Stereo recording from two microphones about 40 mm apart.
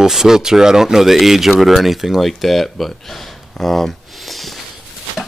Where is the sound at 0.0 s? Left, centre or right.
Centre.